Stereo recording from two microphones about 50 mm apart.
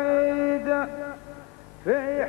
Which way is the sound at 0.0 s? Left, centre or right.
Centre.